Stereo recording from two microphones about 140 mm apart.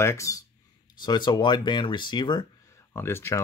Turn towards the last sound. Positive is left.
turn(degrees=15)  # may be behind; listen again after turning